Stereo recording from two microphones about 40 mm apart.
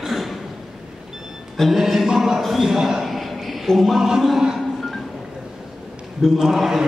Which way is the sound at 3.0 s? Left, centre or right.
Centre.